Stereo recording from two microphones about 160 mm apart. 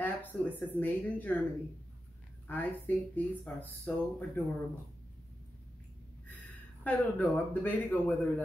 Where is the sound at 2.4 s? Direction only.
10° left (ahead or behind).